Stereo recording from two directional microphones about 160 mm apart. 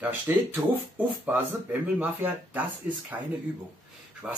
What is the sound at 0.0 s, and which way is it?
Speech, 10° right (ahead or behind).